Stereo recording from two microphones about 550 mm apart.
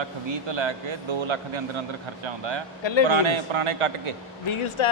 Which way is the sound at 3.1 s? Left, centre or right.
Right.